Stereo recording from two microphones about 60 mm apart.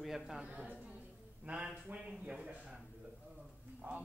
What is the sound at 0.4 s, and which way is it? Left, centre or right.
A man's voice, right.